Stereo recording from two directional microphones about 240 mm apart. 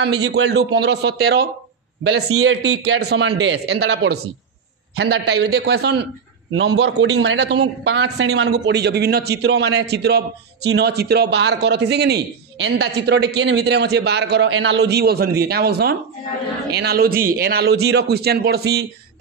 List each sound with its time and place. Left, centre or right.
0.3 s a man's voice: right
2.0 s a man's voice: right
2.8 s a man's voice: right